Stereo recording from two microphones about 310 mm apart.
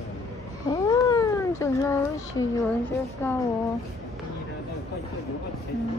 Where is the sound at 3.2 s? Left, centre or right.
Centre.